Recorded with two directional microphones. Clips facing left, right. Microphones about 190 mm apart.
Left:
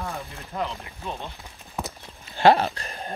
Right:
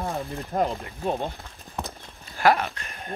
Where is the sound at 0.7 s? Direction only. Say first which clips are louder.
Right 7 dB; 50° right (ahead or behind).